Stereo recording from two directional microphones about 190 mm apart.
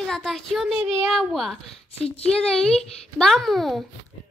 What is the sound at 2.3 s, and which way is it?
Speech, 5° left (ahead or behind).